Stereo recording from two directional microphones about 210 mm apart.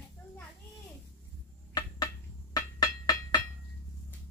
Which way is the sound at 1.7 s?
20° left (ahead or behind).